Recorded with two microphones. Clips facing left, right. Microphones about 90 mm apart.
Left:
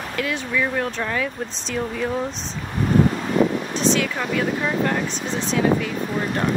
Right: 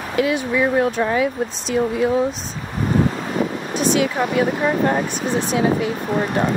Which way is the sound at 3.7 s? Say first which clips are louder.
Right 4 dB; 15° right (ahead or behind).